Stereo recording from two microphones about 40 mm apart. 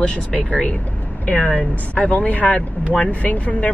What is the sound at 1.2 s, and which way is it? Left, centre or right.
Speech, left.